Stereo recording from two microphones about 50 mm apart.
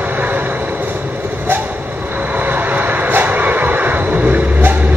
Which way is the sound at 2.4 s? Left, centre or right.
Right.